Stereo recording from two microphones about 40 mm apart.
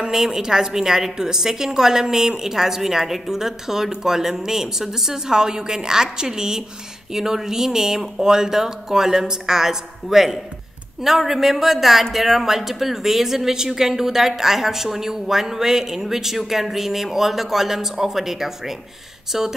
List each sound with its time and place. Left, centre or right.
0.1 s speech: centre